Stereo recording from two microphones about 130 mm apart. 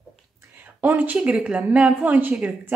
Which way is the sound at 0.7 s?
15° right (ahead or behind).